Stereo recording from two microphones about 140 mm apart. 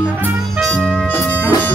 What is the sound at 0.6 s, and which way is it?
Music, 5° left (ahead or behind).